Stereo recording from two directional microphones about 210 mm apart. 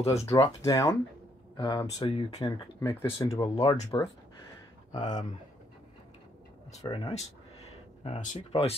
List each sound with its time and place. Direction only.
0.0 s speech: 30° left (ahead or behind)
0.6 s speech: 15° left (ahead or behind)
4.9 s speech: 35° left (ahead or behind)
6.7 s a sound: 30° left (ahead or behind)
8.4 s speech: 30° left (ahead or behind)